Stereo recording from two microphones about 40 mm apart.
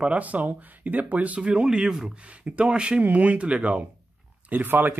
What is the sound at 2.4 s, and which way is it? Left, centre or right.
Speech, right.